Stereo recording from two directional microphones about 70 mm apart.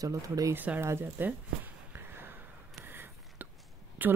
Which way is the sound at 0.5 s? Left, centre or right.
Right.